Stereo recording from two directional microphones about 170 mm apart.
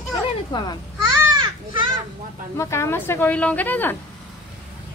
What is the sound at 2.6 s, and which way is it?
A woman's voice, 15° left (ahead or behind).